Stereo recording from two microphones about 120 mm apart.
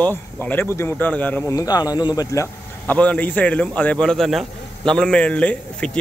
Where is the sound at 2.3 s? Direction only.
20° left (ahead or behind).